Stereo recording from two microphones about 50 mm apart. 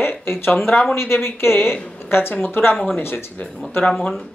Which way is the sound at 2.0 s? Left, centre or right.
Left.